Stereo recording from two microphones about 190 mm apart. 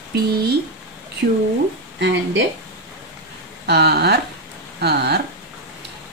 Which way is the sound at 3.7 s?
60° right (ahead or behind).